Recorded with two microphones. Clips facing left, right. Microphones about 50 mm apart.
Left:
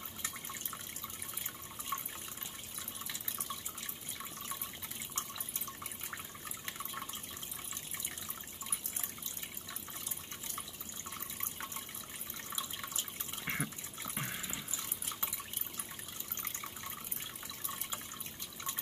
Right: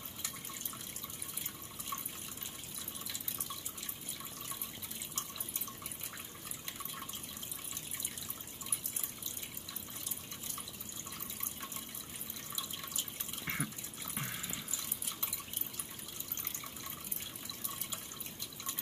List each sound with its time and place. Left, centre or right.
1.9 s water: left
13.5 s water: centre